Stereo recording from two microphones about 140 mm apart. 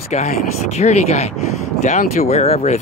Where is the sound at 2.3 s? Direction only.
50° left (ahead or behind).